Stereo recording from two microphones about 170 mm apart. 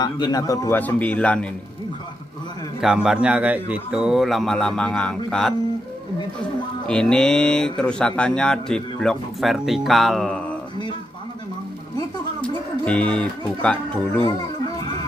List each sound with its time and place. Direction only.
0.0 s a man's voice: 25° left (ahead or behind)
0.7 s a man's voice: 10° left (ahead or behind)
2.8 s speech: 5° right (ahead or behind)
6.9 s speech: 5° left (ahead or behind)
12.4 s music: 5° left (ahead or behind)
13.6 s a man's voice: 5° left (ahead or behind)